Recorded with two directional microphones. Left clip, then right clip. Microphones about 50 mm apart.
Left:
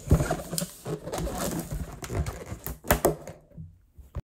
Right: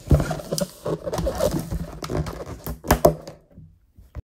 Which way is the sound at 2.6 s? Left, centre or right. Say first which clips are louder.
Right 7 dB; right.